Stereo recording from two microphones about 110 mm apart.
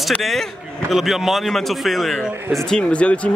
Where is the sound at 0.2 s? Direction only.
Centre (ahead or behind).